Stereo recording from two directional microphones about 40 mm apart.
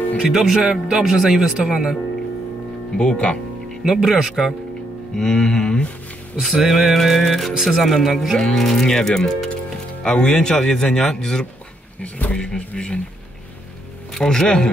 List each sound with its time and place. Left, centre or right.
0.2 s speech: centre
3.0 s music: left
4.0 s speech: centre
5.1 s music: centre
6.4 s music: centre
7.5 s speech: centre
7.8 s music: centre
8.5 s speech: centre
12.0 s speech: left
12.5 s music: left
14.1 s speech: centre